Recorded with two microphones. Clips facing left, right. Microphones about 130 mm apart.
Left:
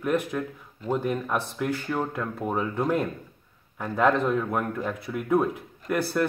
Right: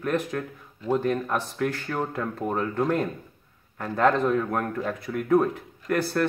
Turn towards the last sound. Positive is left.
turn(degrees=5)  # may be behind; listen again after turning